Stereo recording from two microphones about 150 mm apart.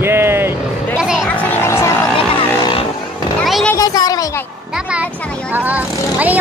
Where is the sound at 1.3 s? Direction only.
15° left (ahead or behind).